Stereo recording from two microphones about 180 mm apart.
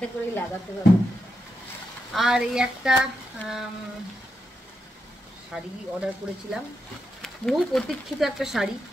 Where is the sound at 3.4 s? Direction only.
10° left (ahead or behind).